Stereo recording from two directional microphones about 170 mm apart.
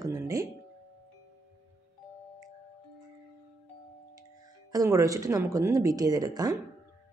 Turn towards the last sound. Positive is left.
turn(degrees=-20)  # may be behind; listen again after turning